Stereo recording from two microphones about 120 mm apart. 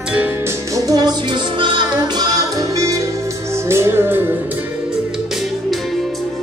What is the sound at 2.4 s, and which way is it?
Music, 30° right (ahead or behind).